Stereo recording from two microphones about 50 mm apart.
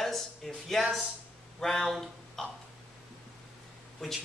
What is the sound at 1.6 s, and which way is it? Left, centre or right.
Speech, centre.